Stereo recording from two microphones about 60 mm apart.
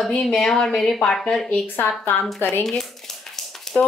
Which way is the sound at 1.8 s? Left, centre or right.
Left.